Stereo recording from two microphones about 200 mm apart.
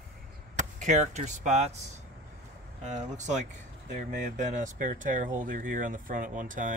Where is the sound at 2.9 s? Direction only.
35° right (ahead or behind).